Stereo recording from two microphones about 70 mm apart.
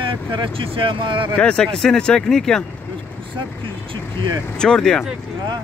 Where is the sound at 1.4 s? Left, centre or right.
Centre.